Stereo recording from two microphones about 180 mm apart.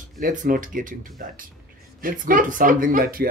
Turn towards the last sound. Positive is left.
turn(degrees=-55)  # may be behind; listen again after turning